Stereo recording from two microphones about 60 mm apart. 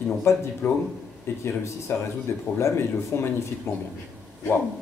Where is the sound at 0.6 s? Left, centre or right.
Left.